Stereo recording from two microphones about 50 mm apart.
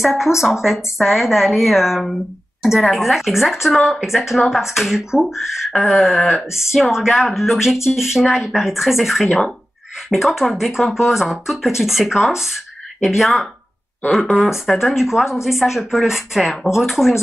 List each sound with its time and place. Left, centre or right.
0.0 s speech: centre
3.7 s speech: centre
4.0 s speech: centre